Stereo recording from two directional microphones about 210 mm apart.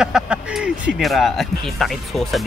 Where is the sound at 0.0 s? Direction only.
5° right (ahead or behind).